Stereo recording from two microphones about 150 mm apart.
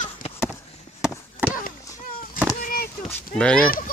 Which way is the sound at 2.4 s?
65° left (ahead or behind).